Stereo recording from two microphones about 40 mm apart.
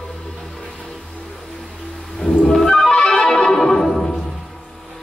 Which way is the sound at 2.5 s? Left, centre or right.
Centre.